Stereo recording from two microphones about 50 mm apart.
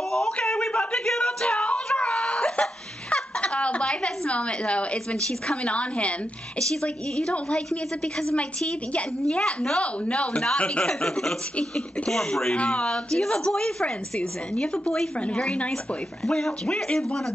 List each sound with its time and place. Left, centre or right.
0.5 s a sound: centre
1.5 s whimper: left
3.1 s a sound: left
3.8 s a woman's voice: left
6.7 s a woman's voice: centre
9.3 s a woman's voice: centre
12.5 s a woman's voice: left
16.3 s a woman's voice: centre